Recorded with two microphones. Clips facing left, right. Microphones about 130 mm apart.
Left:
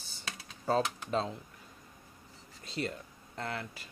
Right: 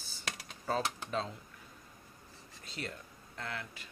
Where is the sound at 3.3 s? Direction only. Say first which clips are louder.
Left 4 dB; 40° left (ahead or behind).